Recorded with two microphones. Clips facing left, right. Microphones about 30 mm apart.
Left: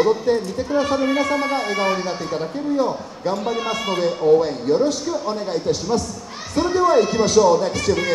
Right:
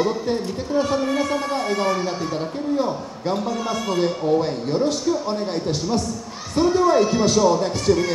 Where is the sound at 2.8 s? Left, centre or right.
Centre.